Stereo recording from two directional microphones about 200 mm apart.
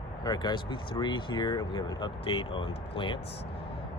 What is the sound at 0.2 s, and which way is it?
Speech, 20° left (ahead or behind).